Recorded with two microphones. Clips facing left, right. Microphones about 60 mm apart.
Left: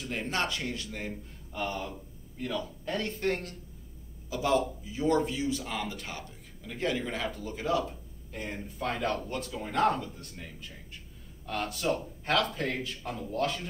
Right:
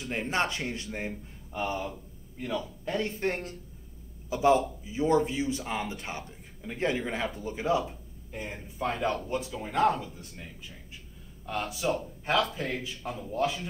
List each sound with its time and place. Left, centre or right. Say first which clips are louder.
0.0 s speech: right 2 dB; centre
0.3 s a man's voice: right 2 dB; right
1.6 s a man's voice: right 2 dB; centre
3.2 s a man's voice: even; right
8.4 s speech: right 1 dB; centre
11.4 s a man's voice: right 1 dB; centre